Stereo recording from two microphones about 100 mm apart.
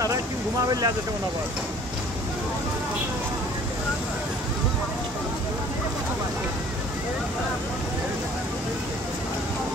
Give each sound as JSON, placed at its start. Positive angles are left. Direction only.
{"t": 0.7, "sound": "speech", "side_deg": -40}